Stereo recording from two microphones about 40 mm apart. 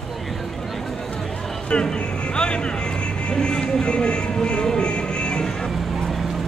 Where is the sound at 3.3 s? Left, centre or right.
Centre.